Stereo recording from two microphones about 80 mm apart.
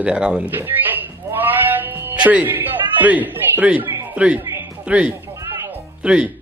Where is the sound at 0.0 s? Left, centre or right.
Centre.